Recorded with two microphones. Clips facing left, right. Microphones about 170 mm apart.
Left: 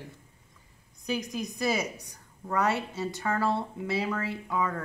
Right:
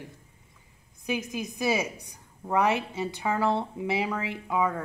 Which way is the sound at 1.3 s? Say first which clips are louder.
Right 2 dB; 10° right (ahead or behind).